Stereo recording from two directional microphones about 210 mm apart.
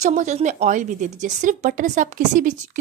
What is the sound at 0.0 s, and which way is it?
A woman's voice, 35° right (ahead or behind).